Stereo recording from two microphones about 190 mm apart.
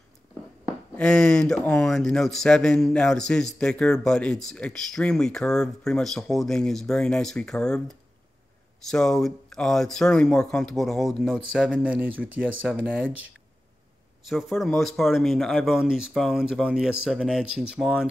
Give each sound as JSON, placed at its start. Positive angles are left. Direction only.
{"t": 0.9, "sound": "speech", "side_deg": 5}
{"t": 14.2, "sound": "speech", "side_deg": 0}